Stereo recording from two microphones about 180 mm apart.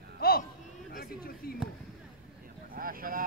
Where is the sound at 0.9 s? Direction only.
55° left (ahead or behind).